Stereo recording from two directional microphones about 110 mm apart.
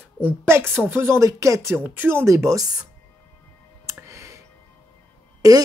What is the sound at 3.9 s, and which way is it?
Music, 25° right (ahead or behind).